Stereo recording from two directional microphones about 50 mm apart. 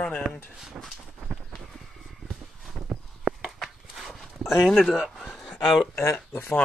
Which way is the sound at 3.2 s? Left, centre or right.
Centre.